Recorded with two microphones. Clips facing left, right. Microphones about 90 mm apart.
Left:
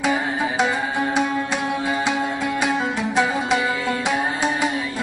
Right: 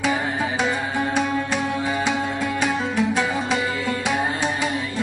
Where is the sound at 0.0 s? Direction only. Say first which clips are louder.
Left 1 dB; 15° left (ahead or behind).